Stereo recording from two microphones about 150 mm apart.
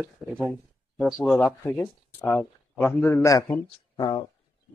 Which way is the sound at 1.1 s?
Centre (ahead or behind).